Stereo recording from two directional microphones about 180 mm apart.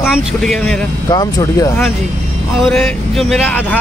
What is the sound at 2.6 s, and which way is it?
Speech, centre (ahead or behind).